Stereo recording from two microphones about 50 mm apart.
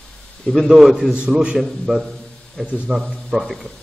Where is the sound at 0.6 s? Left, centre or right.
Centre.